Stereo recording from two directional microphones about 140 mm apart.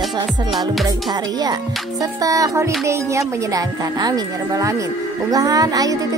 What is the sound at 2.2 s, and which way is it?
Speech, 25° right (ahead or behind).